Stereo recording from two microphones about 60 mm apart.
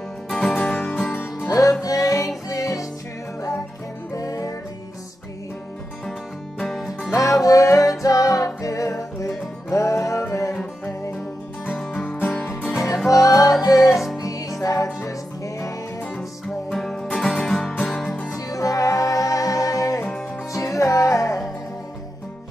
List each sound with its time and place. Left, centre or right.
0.3 s music: centre
1.1 s music: left
1.5 s music: left
4.1 s music: left
6.6 s music: centre
7.1 s music: left
11.9 s music: left
13.1 s music: left
16.6 s music: centre
18.3 s music: left
20.5 s music: left